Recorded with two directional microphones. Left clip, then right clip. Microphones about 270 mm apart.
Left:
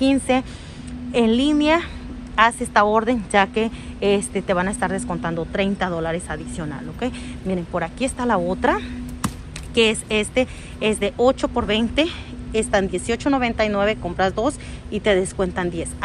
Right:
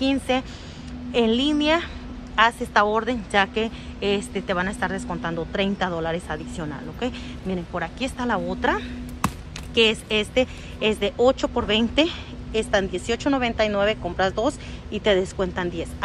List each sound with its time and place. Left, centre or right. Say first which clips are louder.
0.0 s a woman's voice: left 4 dB; centre